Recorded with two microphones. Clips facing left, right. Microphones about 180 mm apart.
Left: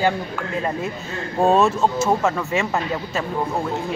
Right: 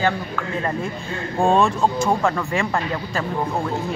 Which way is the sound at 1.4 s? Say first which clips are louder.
Left 1 dB; 5° left (ahead or behind).